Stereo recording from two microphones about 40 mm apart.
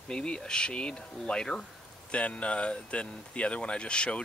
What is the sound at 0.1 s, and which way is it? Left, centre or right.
Speech, left.